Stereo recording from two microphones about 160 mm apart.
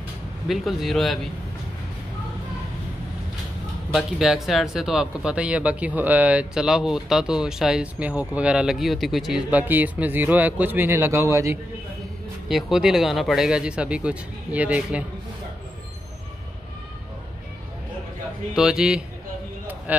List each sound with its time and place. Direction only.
0.5 s speech: centre (ahead or behind)
3.9 s speech: centre (ahead or behind); by 11.5 s 20° right (ahead or behind)
12.4 s speech: centre (ahead or behind)
18.5 s speech: 5° right (ahead or behind)